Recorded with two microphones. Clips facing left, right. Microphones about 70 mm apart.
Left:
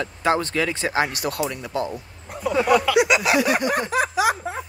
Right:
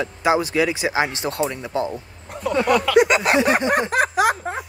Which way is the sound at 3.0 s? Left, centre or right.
Right.